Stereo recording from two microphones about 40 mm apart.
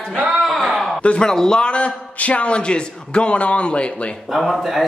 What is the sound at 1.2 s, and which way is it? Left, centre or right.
A man's voice, centre.